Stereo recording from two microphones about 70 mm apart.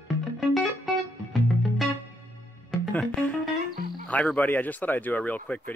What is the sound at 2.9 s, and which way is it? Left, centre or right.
Speech, left.